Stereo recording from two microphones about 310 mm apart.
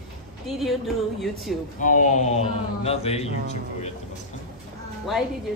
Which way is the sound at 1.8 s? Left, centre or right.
Left.